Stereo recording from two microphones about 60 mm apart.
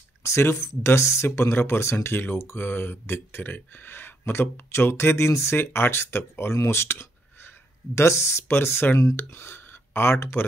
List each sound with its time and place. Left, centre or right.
0.2 s speech: left
7.9 s speech: left